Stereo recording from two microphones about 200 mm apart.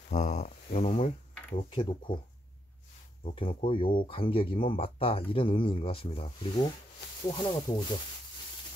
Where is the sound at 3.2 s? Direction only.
25° left (ahead or behind).